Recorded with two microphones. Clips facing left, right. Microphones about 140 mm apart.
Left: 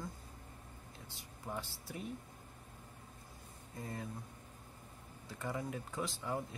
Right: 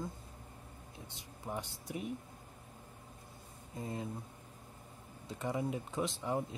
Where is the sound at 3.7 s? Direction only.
20° right (ahead or behind).